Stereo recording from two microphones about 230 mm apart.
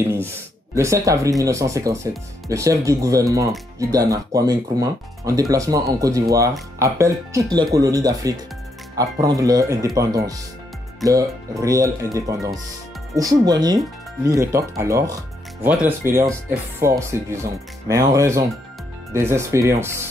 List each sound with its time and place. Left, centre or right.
0.0 s speech: centre
11.6 s speech: centre